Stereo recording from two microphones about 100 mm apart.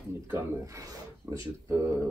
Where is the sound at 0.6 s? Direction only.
30° right (ahead or behind).